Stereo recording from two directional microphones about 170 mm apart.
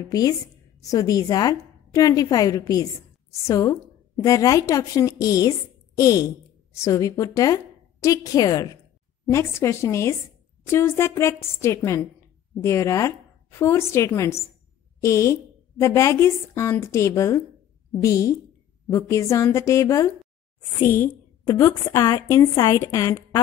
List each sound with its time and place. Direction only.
0.1 s a woman's voice: 20° left (ahead or behind)